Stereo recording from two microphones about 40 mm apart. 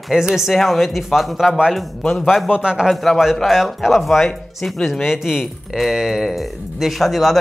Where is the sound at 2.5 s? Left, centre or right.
Right.